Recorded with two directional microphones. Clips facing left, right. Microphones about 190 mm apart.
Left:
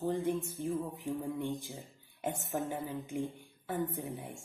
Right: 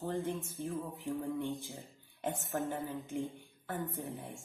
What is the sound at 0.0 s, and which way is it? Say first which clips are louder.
A woman's voice: left 4 dB; 15° left (ahead or behind).